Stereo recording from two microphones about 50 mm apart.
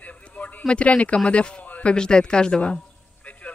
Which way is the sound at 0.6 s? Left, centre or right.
Left.